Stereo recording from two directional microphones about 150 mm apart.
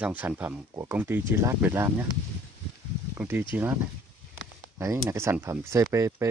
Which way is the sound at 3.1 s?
15° right (ahead or behind).